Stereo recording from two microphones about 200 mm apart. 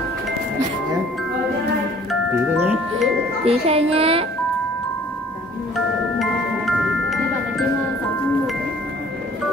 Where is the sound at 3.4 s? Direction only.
30° right (ahead or behind).